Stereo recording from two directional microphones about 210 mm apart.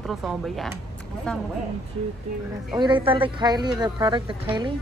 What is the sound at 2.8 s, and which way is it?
Speech, 25° right (ahead or behind).